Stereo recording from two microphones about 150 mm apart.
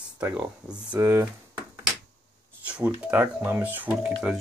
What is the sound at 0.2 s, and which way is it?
Speech, 10° right (ahead or behind).